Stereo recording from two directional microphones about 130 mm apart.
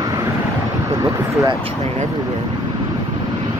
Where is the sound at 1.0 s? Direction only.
25° right (ahead or behind).